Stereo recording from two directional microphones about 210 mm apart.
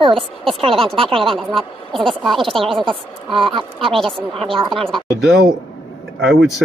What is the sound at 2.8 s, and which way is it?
A woman's voice, 25° right (ahead or behind).